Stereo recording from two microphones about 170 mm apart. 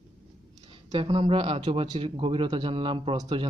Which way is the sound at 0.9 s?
25° right (ahead or behind).